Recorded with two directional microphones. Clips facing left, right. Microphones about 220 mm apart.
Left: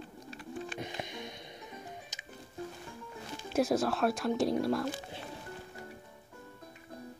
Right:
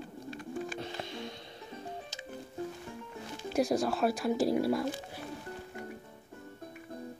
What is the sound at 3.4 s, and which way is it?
Speech, centre (ahead or behind).